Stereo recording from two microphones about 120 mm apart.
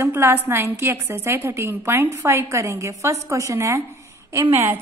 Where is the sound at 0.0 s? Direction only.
20° right (ahead or behind).